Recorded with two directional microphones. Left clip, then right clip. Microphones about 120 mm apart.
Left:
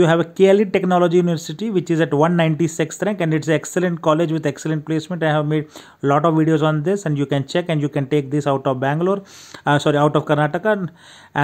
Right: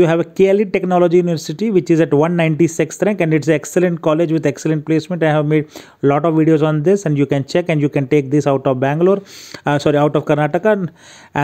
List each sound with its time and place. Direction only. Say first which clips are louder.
0.0 s speech: right 1 dB; 30° right (ahead or behind)